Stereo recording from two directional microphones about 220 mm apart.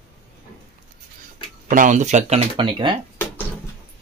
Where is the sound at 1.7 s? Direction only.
35° right (ahead or behind).